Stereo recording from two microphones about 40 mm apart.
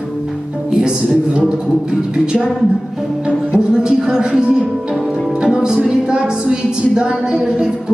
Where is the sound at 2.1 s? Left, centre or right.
Right.